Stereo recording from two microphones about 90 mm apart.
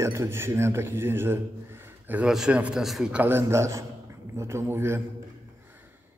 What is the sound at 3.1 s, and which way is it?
A man's voice, 25° right (ahead or behind).